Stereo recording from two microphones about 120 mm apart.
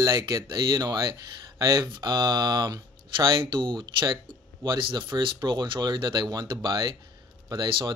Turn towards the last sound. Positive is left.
turn(degrees=-35)  # may be behind; listen again after turning